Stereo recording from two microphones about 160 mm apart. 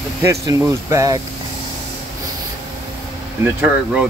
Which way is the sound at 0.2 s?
20° right (ahead or behind).